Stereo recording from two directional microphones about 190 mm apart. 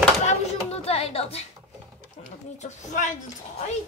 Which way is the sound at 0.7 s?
30° left (ahead or behind).